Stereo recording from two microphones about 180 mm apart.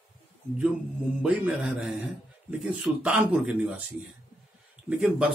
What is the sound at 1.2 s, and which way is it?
A man's voice, 5° right (ahead or behind).